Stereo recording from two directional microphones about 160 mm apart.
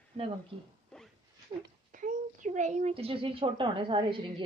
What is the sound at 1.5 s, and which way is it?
Speech, 35° right (ahead or behind).